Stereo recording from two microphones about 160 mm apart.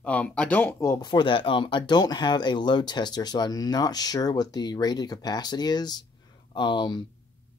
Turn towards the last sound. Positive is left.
turn(degrees=30)  # may be behind; listen again after turning